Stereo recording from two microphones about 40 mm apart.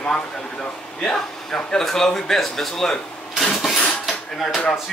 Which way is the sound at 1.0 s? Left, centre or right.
Centre.